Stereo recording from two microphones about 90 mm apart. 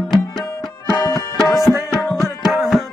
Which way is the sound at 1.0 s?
40° left (ahead or behind).